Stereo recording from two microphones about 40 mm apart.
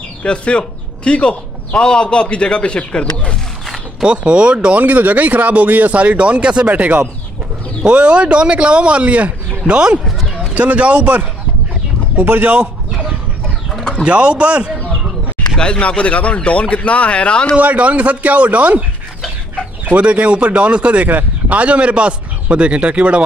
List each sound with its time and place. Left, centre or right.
0.2 s a man's voice: left
4.0 s speech: right
4.7 s speech: right
7.8 s speech: right
10.5 s speech: right
12.2 s speech: right
14.0 s speech: right
16.0 s speech: left
17.6 s speech: right
19.9 s speech: right